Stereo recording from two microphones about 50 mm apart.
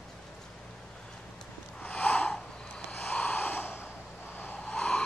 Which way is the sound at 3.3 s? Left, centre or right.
Left.